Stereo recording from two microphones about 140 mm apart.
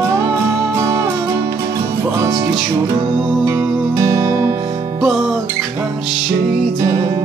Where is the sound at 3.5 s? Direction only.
20° right (ahead or behind).